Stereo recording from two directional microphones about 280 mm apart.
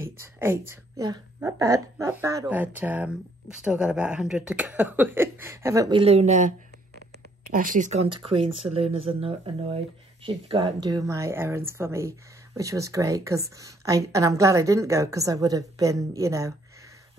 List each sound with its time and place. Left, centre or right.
0.0 s speech: centre; by 6.5 s right
7.5 s speech: right; by 16.5 s centre